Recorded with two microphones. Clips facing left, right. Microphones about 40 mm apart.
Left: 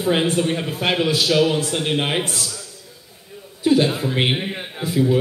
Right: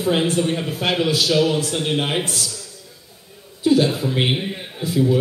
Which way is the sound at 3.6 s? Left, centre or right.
Left.